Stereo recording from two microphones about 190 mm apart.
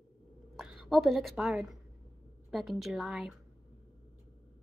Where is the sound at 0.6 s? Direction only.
Centre (ahead or behind).